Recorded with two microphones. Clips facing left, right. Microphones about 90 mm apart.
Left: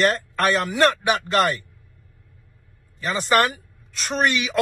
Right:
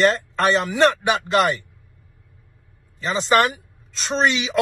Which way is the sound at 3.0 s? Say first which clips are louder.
Right 2 dB; 20° right (ahead or behind).